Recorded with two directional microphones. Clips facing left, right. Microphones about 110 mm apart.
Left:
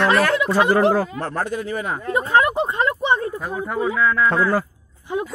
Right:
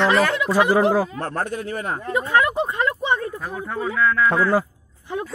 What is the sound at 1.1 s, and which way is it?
Speech, 45° right (ahead or behind).